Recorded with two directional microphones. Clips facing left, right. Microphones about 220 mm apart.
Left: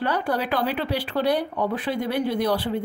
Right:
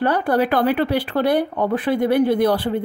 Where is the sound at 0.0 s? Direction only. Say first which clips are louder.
Right 6 dB; 50° right (ahead or behind).